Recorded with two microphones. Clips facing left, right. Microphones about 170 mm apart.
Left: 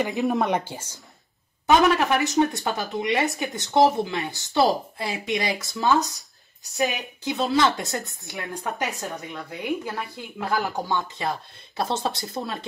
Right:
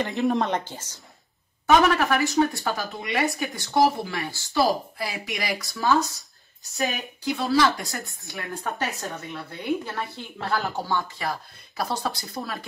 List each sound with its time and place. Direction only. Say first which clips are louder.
0.0 s speech: even; 5° left (ahead or behind)
2.0 s speech: left 1 dB; 20° left (ahead or behind)
8.0 s speech: even; centre (ahead or behind)
8.3 s speech: even; 20° left (ahead or behind)